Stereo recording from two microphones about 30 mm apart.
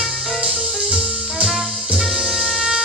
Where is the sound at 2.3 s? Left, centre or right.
Right.